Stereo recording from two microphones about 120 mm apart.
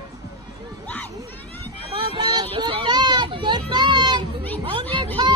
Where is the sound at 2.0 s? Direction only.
45° right (ahead or behind).